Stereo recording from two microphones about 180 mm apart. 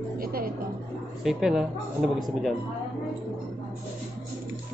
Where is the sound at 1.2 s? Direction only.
5° right (ahead or behind).